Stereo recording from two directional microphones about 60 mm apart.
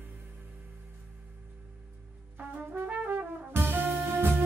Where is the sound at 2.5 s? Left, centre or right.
Right.